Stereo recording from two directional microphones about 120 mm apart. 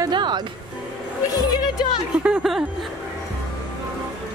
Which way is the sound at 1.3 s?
35° left (ahead or behind).